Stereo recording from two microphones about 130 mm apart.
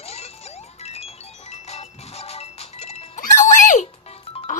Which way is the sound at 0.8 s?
55° left (ahead or behind).